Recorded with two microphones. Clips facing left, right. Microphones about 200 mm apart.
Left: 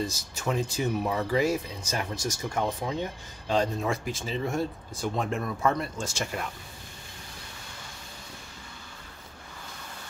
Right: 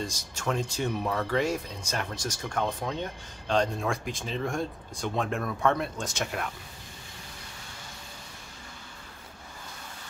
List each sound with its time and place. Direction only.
0.0 s speech: 5° left (ahead or behind)